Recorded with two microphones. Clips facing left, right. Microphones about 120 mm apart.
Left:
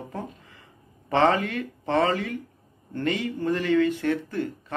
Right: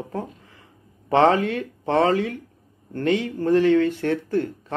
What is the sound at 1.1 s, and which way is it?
Speech, 50° right (ahead or behind).